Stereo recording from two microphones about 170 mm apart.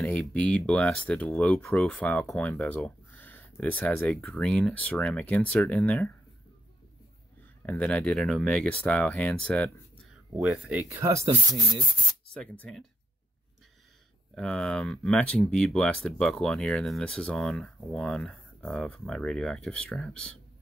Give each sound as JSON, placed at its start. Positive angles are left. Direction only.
{"t": 0.0, "sound": "speech", "side_deg": 10}
{"t": 7.6, "sound": "speech", "side_deg": 5}
{"t": 10.3, "sound": "speech", "side_deg": -5}
{"t": 12.4, "sound": "speech", "side_deg": 5}
{"t": 14.3, "sound": "speech", "side_deg": 5}